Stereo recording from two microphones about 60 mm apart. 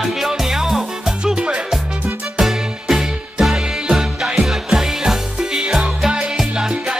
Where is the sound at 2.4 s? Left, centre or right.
Centre.